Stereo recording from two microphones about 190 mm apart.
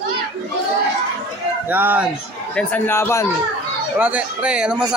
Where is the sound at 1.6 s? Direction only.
10° right (ahead or behind).